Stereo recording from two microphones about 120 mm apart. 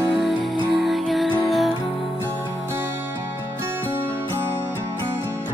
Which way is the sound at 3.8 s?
15° right (ahead or behind).